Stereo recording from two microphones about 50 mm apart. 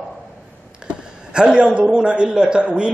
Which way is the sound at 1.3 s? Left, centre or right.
Right.